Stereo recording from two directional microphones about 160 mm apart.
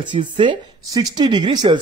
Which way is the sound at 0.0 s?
30° right (ahead or behind).